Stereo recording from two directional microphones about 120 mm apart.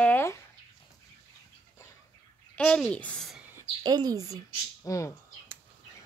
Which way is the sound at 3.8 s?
35° right (ahead or behind).